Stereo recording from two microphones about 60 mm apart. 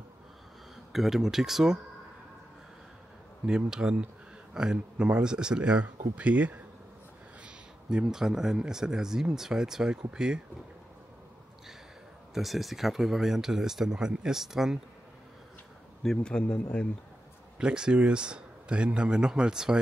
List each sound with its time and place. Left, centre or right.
0.9 s speech: centre
3.4 s speech: centre
7.4 s speech: centre
12.4 s speech: centre
16.0 s speech: centre
17.6 s speech: centre